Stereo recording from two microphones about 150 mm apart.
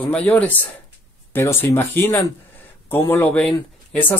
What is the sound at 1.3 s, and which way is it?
Speech, 15° left (ahead or behind).